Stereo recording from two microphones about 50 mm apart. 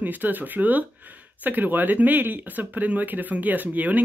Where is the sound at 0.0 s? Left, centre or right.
Right.